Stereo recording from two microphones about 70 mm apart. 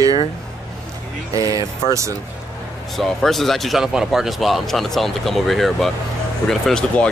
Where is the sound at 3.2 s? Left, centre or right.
Centre.